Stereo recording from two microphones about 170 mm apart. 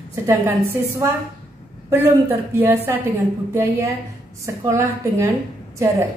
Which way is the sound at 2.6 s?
15° right (ahead or behind).